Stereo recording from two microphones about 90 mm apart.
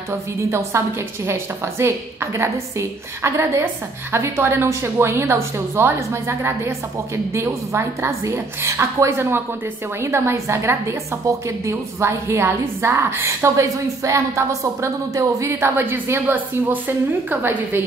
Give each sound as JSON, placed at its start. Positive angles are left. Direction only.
{"t": 0.1, "sound": "a woman's voice", "side_deg": -30}
{"t": 15.8, "sound": "a woman's voice", "side_deg": -25}